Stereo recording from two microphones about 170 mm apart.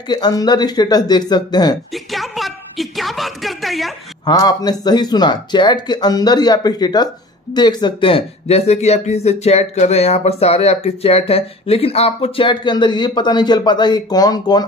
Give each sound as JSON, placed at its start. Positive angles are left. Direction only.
{"t": 0.1, "sound": "speech", "side_deg": 25}
{"t": 2.0, "sound": "a sound", "side_deg": 0}
{"t": 4.3, "sound": "speech", "side_deg": 25}